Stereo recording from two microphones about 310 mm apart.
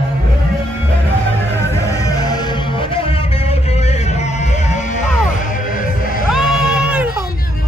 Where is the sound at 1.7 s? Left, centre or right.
Centre; by 6.2 s left.